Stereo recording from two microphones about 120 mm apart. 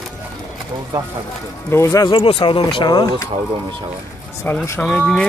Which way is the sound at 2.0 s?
50° left (ahead or behind).